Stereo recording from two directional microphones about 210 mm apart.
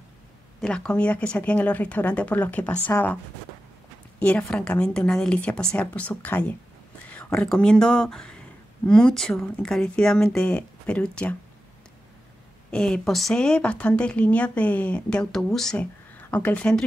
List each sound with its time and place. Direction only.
0.6 s speech: 5° left (ahead or behind)
4.2 s speech: 5° left (ahead or behind)
12.7 s speech: 5° left (ahead or behind)